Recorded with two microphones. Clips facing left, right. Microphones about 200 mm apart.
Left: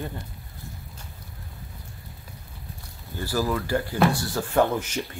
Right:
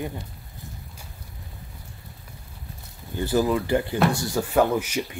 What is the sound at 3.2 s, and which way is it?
Speech, 20° right (ahead or behind).